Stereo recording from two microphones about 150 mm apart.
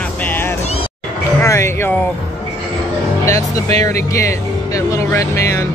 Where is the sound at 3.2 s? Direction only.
20° left (ahead or behind).